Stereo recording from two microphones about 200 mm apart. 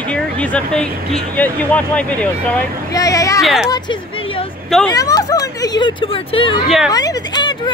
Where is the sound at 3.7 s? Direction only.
25° left (ahead or behind).